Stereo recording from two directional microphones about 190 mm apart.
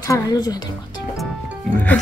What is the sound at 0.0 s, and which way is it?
Speech, 20° left (ahead or behind).